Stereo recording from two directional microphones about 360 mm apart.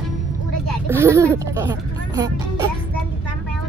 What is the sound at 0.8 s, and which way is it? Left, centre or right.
Speech, centre.